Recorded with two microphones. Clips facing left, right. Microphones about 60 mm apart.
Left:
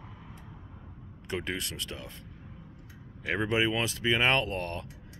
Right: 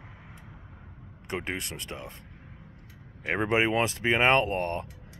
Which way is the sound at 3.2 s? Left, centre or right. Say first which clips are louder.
Right 2 dB; right.